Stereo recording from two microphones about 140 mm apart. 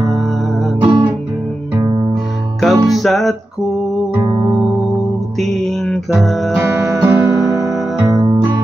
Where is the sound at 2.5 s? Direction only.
Centre (ahead or behind).